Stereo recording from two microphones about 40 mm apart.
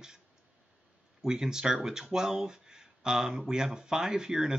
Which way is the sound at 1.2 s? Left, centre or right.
Centre.